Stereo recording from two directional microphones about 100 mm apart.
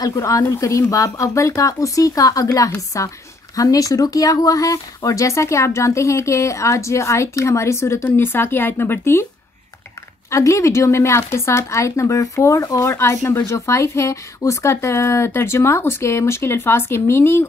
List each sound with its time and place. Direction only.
0.0 s speech: 35° left (ahead or behind)
10.3 s speech: 30° left (ahead or behind)